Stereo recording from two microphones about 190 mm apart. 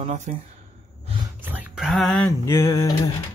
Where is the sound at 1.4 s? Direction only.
10° right (ahead or behind).